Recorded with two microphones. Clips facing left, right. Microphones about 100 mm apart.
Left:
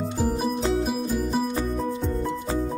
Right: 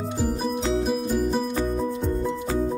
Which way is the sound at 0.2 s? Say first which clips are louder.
Left 1 dB; 5° left (ahead or behind).